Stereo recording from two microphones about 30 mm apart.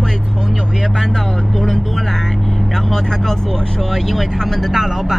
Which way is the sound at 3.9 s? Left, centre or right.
Centre.